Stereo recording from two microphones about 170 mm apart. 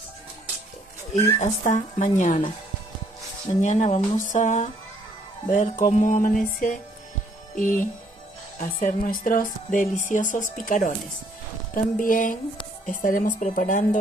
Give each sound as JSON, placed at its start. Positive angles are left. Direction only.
{"t": 1.4, "sound": "speech", "side_deg": 45}
{"t": 3.6, "sound": "speech", "side_deg": 45}